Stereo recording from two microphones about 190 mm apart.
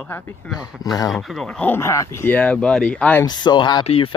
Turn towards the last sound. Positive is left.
turn(degrees=25)  # may be behind; listen again after turning